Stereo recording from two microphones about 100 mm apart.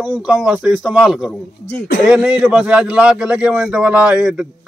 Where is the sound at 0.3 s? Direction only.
5° right (ahead or behind).